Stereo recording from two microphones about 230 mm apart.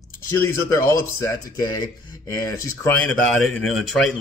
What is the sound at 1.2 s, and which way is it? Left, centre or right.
Speech, centre.